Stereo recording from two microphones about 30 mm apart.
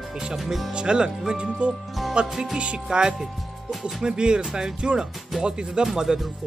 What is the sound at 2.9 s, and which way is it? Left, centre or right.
Speech, right.